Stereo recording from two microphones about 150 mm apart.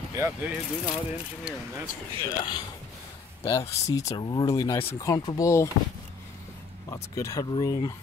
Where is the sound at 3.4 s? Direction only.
20° left (ahead or behind).